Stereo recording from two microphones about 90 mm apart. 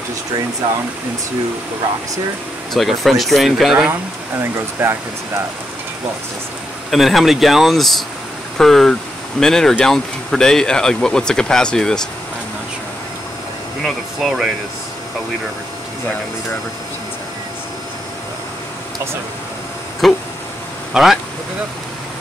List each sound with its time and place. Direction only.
2.7 s speech: centre (ahead or behind)
4.4 s speech: 30° right (ahead or behind)
6.9 s speech: centre (ahead or behind)
13.8 s speech: centre (ahead or behind)
20.0 s speech: centre (ahead or behind)